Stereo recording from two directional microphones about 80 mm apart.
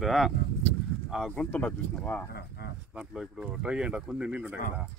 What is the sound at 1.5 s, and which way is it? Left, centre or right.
Speech, centre.